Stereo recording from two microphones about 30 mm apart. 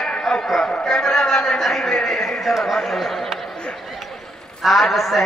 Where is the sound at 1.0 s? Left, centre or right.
Centre.